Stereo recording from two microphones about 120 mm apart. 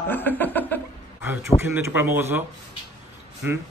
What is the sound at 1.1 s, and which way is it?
A man's voice, 20° right (ahead or behind).